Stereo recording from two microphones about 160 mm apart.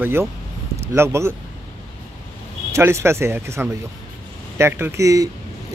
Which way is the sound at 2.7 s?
15° right (ahead or behind).